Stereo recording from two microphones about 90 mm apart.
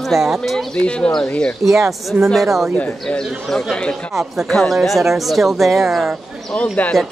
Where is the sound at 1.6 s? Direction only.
Centre (ahead or behind).